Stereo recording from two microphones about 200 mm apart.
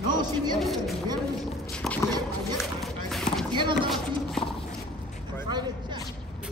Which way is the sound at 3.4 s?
25° right (ahead or behind).